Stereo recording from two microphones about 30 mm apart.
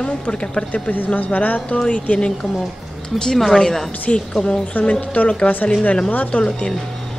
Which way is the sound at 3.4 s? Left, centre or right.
Centre.